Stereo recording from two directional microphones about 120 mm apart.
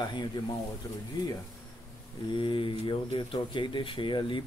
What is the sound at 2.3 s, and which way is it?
Speech, 45° left (ahead or behind).